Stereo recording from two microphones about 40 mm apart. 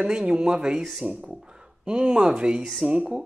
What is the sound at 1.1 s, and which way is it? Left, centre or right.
Speech, right.